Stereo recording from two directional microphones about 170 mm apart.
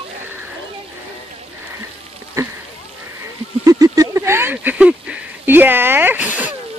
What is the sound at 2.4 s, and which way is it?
Speech, 15° right (ahead or behind).